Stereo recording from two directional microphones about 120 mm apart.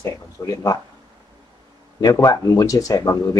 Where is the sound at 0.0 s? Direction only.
25° left (ahead or behind).